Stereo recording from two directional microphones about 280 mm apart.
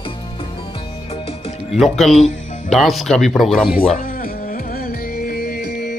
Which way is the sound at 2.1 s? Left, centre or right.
Left.